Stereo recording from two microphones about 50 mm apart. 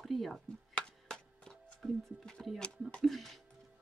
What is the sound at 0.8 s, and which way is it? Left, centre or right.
Chop, centre.